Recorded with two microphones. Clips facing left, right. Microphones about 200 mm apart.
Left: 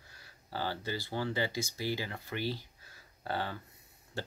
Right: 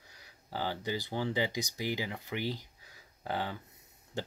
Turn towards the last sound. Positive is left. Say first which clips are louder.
# right 2 dB
turn(degrees=-20)  # may be behind; listen again after turning